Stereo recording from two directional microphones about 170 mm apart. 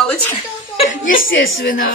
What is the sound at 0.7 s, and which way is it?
Chuckle, 45° left (ahead or behind).